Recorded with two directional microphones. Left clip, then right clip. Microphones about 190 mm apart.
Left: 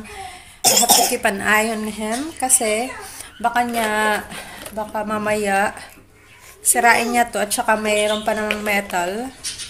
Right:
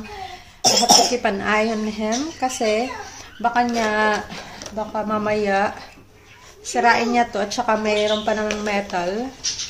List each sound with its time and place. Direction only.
0.6 s cough: 25° right (ahead or behind)
1.1 s a woman's voice: 5° left (ahead or behind)